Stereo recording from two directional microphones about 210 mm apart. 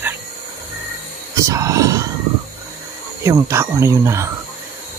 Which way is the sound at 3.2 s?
15° right (ahead or behind).